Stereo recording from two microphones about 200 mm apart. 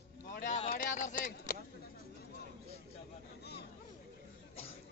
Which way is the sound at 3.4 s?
55° left (ahead or behind).